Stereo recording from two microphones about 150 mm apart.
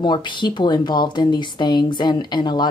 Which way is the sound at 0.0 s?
30° left (ahead or behind).